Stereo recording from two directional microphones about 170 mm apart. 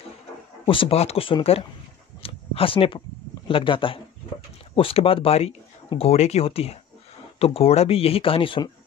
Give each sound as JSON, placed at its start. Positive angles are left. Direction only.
{"t": 0.7, "sound": "speech", "side_deg": 30}
{"t": 2.2, "sound": "a sound", "side_deg": 35}
{"t": 3.4, "sound": "speech", "side_deg": 30}